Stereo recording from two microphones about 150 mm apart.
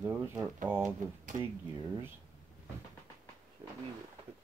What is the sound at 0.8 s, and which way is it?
Speech, 55° right (ahead or behind).